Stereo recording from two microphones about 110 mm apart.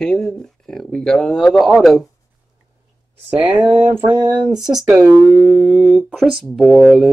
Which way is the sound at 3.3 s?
15° right (ahead or behind).